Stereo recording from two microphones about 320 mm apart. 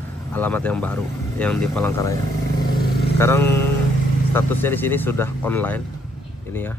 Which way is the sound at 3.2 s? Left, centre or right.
Centre.